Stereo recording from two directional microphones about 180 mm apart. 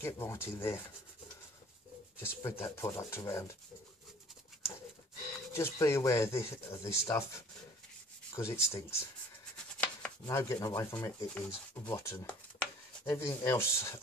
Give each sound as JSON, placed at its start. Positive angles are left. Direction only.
{"t": 0.0, "sound": "speech", "side_deg": 15}
{"t": 2.6, "sound": "speech", "side_deg": 15}
{"t": 5.5, "sound": "speech", "side_deg": 15}
{"t": 9.8, "sound": "chopping", "side_deg": 15}
{"t": 11.3, "sound": "speech", "side_deg": 10}